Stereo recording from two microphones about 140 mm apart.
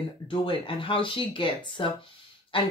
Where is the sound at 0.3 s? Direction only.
40° left (ahead or behind).